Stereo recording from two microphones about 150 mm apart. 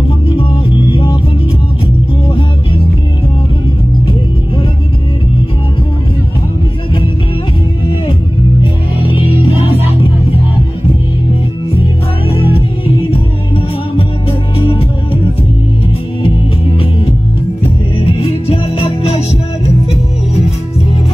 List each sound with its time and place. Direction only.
0.9 s music: 35° left (ahead or behind)
9.0 s music: 35° left (ahead or behind)
12.4 s music: 40° left (ahead or behind)
18.1 s music: 40° left (ahead or behind)